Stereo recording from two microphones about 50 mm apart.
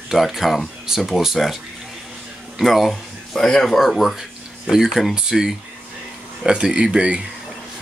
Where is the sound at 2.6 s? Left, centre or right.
Centre.